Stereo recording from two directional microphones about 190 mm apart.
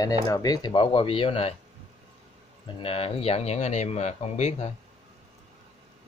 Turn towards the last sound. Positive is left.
turn(degrees=35)  # may be behind; listen again after turning